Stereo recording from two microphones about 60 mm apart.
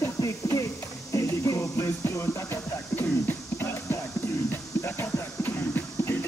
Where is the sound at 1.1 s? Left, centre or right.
Left.